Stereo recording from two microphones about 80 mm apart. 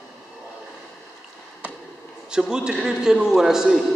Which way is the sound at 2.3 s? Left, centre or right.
Centre.